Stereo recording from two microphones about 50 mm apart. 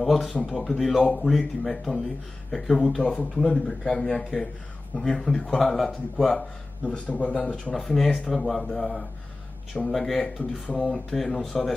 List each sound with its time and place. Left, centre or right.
0.0 s speech: centre
5.8 s speech: centre
6.8 s speech: left
7.7 s speech: centre
10.4 s speech: left
10.8 s speech: centre